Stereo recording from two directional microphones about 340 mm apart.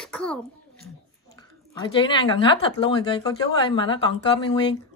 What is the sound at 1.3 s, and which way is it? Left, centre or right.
A woman's voice, centre.